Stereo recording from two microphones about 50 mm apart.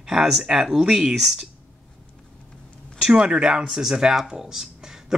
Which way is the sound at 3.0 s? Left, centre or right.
Centre.